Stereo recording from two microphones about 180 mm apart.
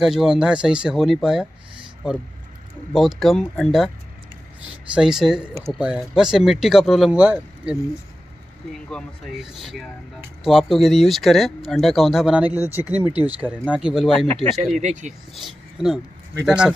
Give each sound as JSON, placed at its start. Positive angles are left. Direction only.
{"t": 0.0, "sound": "speech", "side_deg": 0}
{"t": 2.9, "sound": "speech", "side_deg": 0}
{"t": 4.9, "sound": "speech", "side_deg": -5}
{"t": 8.7, "sound": "speech", "side_deg": 0}
{"t": 14.8, "sound": "speech", "side_deg": -40}
{"t": 15.3, "sound": "speech", "side_deg": 0}